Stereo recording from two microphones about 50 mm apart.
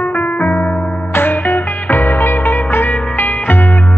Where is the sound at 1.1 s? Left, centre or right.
Left.